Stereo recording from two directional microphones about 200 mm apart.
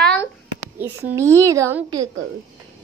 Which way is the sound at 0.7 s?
10° right (ahead or behind).